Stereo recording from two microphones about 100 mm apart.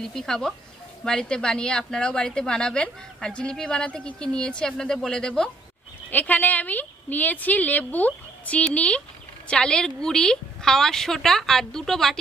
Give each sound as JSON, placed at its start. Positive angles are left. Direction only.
{"t": 0.0, "sound": "a woman's voice", "side_deg": 5}
{"t": 6.0, "sound": "a woman's voice", "side_deg": 15}